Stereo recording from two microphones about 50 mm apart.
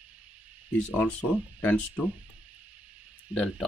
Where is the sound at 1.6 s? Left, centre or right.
Left.